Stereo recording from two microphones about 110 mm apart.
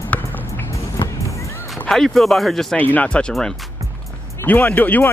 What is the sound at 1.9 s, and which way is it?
Speech, 5° left (ahead or behind).